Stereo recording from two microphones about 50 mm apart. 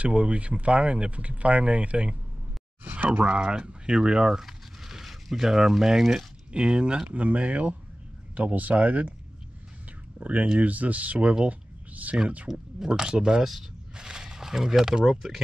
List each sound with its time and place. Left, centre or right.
0.0 s speech: right
3.1 s speech: right
6.5 s speech: right
10.1 s speech: right
11.4 s a sound: right
12.4 s speech: centre